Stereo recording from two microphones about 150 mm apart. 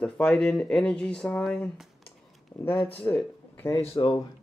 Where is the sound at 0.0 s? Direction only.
5° left (ahead or behind).